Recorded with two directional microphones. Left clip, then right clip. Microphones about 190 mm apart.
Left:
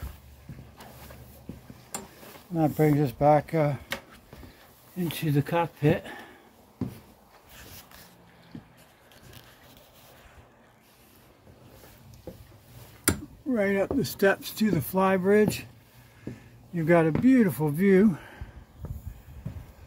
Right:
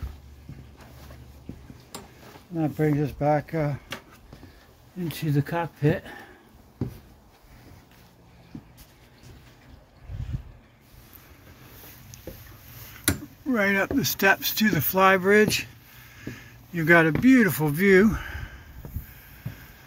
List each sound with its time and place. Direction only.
2.5 s speech: 40° left (ahead or behind); by 3.8 s 20° left (ahead or behind)
4.9 s speech: 10° left (ahead or behind)
13.5 s speech: centre (ahead or behind)